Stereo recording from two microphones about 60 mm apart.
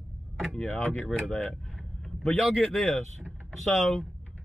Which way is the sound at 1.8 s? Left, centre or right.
Centre.